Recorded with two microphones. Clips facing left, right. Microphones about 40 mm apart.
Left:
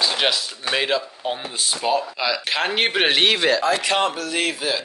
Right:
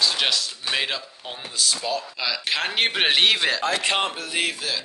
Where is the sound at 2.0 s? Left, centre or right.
Centre.